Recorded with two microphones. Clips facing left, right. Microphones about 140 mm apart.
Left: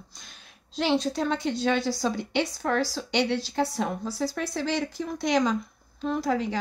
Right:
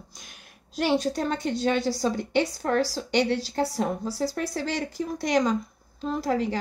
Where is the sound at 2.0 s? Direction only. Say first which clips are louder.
Right 2 dB; 45° right (ahead or behind).